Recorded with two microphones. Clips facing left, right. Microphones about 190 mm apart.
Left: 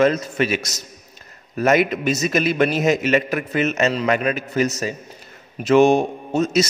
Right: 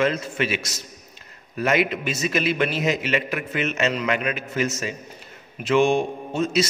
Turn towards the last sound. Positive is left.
turn(degrees=40)  # may be behind; listen again after turning